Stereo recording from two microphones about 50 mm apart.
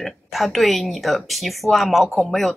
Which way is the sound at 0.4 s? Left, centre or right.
Centre.